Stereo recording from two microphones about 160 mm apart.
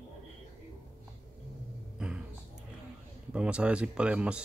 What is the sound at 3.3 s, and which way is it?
Speech, 5° right (ahead or behind).